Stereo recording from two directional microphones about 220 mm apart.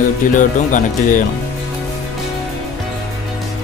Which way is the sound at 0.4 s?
35° left (ahead or behind).